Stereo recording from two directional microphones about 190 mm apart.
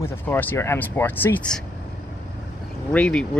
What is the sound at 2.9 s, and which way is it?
Speech, 5° left (ahead or behind).